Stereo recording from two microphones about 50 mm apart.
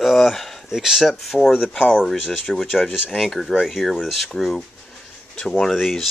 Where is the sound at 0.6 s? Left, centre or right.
Centre.